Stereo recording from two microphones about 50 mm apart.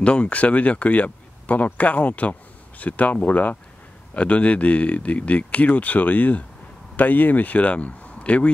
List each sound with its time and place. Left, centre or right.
0.0 s speech: left